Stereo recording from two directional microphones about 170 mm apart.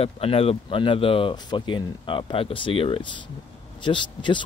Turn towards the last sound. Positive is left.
turn(degrees=30)  # may be behind; listen again after turning